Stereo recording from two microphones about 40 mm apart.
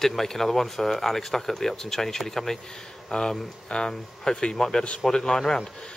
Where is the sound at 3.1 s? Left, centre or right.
Centre.